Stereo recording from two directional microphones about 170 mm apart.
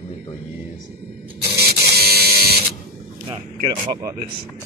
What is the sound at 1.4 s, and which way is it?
Printer, 70° right (ahead or behind).